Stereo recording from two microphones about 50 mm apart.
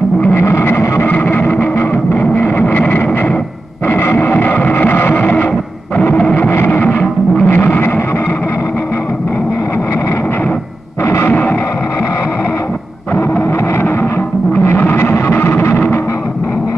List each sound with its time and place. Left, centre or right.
0.3 s a sound: left
1.0 s music: left
6.5 s music: left
6.8 s music: left
7.4 s music: left
11.1 s music: left
14.5 s music: left